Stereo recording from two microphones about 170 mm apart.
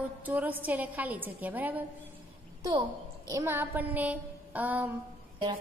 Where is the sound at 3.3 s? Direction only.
15° right (ahead or behind).